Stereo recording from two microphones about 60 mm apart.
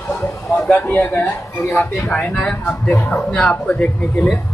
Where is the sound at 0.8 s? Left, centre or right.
Left.